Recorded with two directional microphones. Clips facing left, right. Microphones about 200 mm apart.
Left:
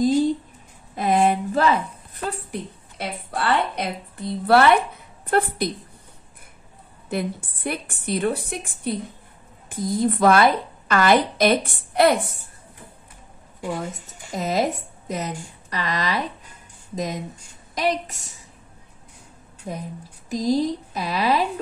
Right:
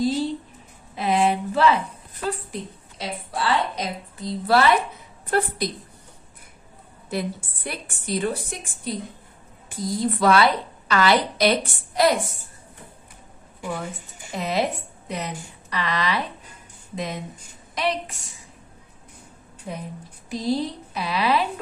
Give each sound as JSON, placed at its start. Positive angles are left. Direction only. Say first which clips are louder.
{"t": 0.0, "sound": "a sound", "louder": "left 4 dB", "side_deg": 45}
{"t": 5.3, "sound": "a woman's voice", "louder": "left 2 dB", "side_deg": 55}
{"t": 7.1, "sound": "a woman's voice", "louder": "left 1 dB", "side_deg": 55}
{"t": 14.0, "sound": "a woman's voice", "louder": "left 2 dB", "side_deg": 45}
{"t": 19.7, "sound": "a woman's voice", "louder": "left 1 dB", "side_deg": 40}